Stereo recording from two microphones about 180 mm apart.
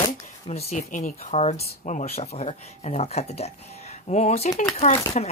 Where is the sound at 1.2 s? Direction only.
40° left (ahead or behind).